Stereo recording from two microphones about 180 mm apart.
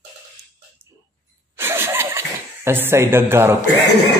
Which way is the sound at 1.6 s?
15° right (ahead or behind).